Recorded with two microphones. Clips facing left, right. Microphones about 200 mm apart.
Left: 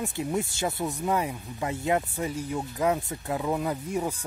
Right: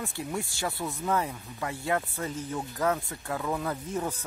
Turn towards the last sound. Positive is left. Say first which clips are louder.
# left 3 dB
turn(degrees=15)  # may be behind; listen again after turning